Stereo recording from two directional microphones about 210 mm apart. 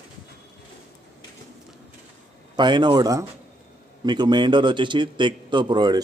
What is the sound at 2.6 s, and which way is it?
A man's voice, 20° right (ahead or behind).